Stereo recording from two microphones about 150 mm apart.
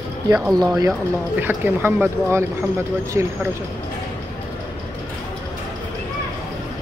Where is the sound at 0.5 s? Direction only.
25° right (ahead or behind).